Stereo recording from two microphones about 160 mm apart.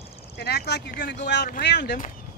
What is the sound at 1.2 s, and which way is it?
Speech, 75° left (ahead or behind).